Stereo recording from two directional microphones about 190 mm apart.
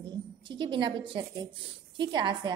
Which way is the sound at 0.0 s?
25° right (ahead or behind).